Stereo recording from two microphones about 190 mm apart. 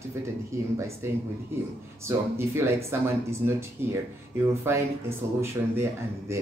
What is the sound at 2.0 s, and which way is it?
Speech, 15° right (ahead or behind).